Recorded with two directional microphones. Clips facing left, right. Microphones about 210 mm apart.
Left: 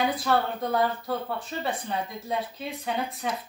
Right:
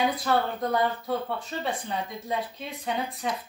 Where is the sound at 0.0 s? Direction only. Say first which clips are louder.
Even; centre (ahead or behind).